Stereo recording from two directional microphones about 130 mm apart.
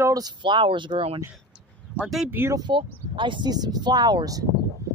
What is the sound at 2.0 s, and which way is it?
Speech, centre (ahead or behind).